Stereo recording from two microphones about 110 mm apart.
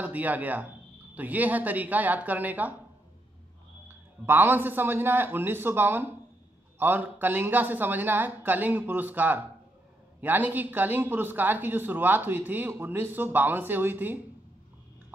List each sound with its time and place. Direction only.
0.0 s a man's voice: 15° right (ahead or behind)
4.3 s a man's voice: 20° right (ahead or behind)